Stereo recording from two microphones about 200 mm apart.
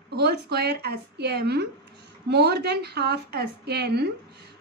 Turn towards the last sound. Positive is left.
turn(degrees=-55)  # may be behind; listen again after turning